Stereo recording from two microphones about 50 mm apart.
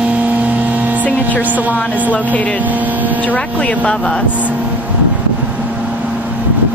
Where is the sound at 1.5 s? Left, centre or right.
Right.